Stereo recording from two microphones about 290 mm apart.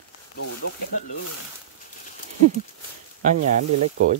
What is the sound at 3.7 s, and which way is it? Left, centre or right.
Speech, right.